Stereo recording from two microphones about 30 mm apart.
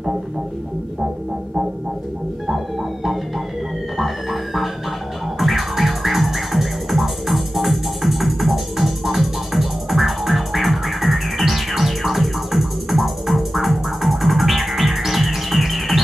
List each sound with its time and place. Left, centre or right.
2.4 s music: centre